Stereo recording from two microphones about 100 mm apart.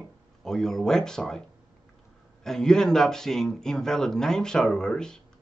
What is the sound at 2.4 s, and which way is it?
Speech, 5° left (ahead or behind).